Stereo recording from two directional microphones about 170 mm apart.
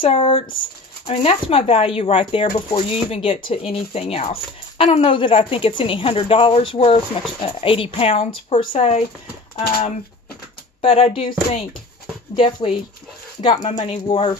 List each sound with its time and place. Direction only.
0.0 s speech: 35° left (ahead or behind)